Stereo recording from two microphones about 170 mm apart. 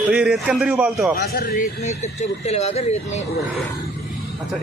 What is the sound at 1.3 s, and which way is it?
Speech, 60° left (ahead or behind).